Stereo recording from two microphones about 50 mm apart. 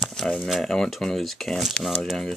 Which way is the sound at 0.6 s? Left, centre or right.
Centre.